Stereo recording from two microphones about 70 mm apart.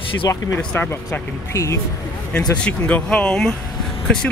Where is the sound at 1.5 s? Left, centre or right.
Left.